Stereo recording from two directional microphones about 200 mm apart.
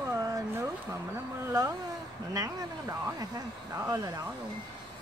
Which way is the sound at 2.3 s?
15° right (ahead or behind).